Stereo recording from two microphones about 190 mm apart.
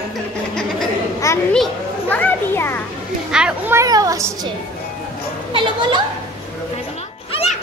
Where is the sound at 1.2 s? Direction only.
15° left (ahead or behind).